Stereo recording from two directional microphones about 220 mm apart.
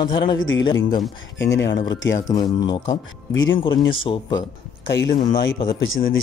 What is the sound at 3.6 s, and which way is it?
Speech, 20° left (ahead or behind).